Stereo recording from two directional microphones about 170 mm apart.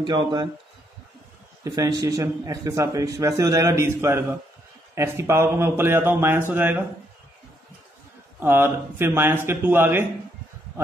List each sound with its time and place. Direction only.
0.0 s a man's voice: 25° right (ahead or behind)
1.6 s a man's voice: 20° right (ahead or behind)
8.4 s a man's voice: 15° right (ahead or behind)